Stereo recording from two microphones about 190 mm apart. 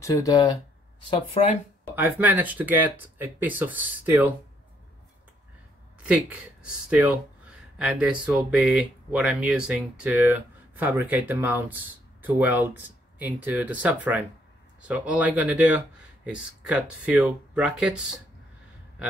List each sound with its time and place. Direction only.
0.0 s speech: 15° left (ahead or behind)
1.1 s speech: 30° left (ahead or behind)
2.0 s speech: 10° right (ahead or behind)
6.0 s speech: 5° right (ahead or behind)